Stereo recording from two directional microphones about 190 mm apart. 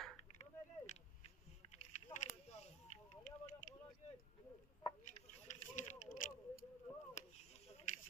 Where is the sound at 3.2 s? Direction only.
40° left (ahead or behind).